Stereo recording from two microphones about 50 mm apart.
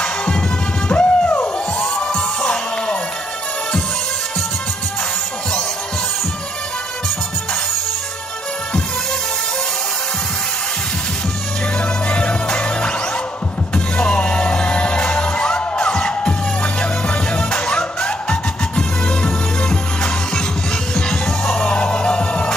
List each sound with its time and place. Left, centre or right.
0.0 s music: centre
0.8 s a sound: left
1.8 s music: centre
12.1 s music: left
13.9 s music: centre